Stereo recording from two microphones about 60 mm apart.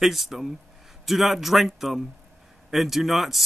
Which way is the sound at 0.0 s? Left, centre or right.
Centre.